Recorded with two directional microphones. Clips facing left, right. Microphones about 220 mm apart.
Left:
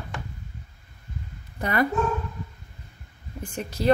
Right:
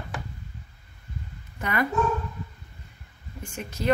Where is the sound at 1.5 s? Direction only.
35° left (ahead or behind).